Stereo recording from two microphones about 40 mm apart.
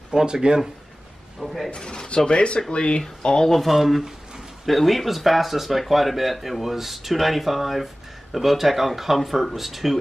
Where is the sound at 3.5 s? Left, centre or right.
Centre.